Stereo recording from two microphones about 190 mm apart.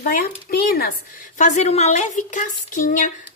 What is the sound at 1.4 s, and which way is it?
A woman's voice, 40° left (ahead or behind).